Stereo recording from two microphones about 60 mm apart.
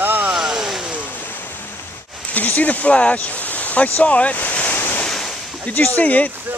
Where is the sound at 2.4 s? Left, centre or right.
Left.